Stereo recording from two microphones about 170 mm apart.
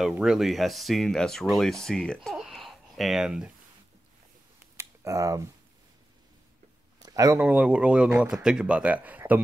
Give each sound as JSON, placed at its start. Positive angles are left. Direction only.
{"t": 0.0, "sound": "speech", "side_deg": -5}
{"t": 2.2, "sound": "babbling", "side_deg": 0}
{"t": 4.7, "sound": "a sound", "side_deg": -20}
{"t": 7.0, "sound": "a man's voice", "side_deg": -20}